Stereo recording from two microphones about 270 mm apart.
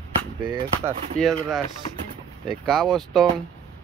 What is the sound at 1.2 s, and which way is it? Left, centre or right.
Speech, centre.